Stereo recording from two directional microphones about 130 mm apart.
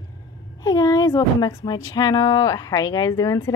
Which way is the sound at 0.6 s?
30° left (ahead or behind).